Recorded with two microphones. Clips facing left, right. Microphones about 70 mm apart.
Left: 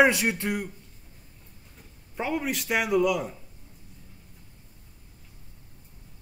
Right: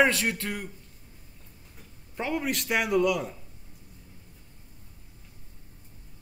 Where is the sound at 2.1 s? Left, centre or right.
Centre.